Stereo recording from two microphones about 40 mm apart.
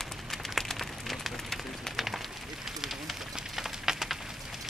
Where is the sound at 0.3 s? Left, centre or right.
Centre.